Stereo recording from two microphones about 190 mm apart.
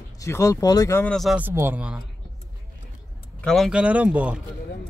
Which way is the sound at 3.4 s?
Centre (ahead or behind).